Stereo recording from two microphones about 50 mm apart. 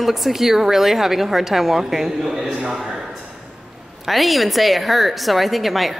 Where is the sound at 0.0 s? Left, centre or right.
Centre.